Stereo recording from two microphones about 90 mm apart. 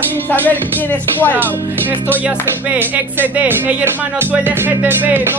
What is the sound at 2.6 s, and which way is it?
Speech, 20° right (ahead or behind).